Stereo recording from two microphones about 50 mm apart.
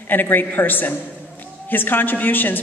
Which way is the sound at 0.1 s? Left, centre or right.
Left.